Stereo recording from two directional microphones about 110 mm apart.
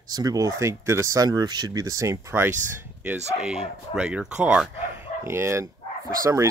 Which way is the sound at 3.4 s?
5° right (ahead or behind).